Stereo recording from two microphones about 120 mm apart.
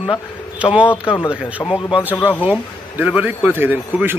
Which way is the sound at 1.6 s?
45° left (ahead or behind).